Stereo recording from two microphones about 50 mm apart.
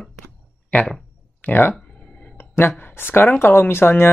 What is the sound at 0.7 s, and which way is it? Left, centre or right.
Speech, left.